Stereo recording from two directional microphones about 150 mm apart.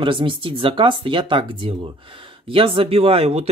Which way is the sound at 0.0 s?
35° right (ahead or behind).